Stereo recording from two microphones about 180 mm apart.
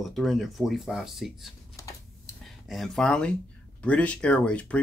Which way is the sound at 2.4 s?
Centre (ahead or behind).